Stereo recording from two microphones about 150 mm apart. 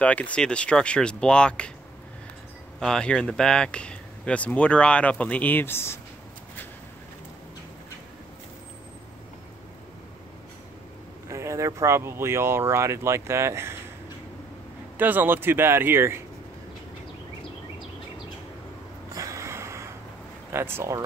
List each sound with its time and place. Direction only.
0.0 s speech: 10° left (ahead or behind)
2.8 s speech: 5° left (ahead or behind)
11.2 s speech: 20° right (ahead or behind)
15.0 s speech: 10° right (ahead or behind)
19.1 s snort: 20° right (ahead or behind)
20.5 s speech: 15° right (ahead or behind)